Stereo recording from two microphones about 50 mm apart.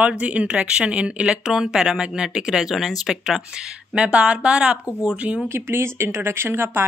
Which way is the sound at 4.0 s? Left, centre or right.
Right.